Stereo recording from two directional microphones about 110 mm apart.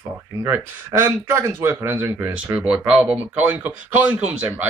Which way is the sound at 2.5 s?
10° right (ahead or behind).